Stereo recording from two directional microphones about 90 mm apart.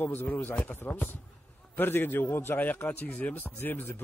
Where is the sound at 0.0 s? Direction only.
20° left (ahead or behind).